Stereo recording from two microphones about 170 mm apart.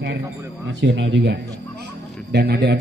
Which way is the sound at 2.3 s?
80° right.